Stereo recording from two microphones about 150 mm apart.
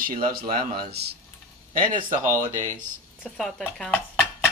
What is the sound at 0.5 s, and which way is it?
Speech, 90° right.